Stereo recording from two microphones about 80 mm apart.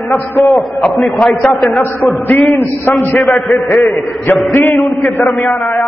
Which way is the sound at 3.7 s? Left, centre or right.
Centre.